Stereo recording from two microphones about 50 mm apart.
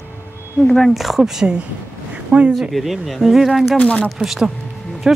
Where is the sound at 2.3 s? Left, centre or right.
Right.